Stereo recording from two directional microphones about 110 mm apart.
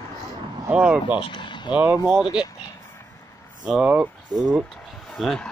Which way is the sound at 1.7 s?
15° right (ahead or behind).